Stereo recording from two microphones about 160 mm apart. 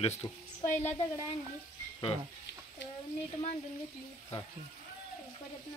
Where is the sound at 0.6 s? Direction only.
50° left (ahead or behind).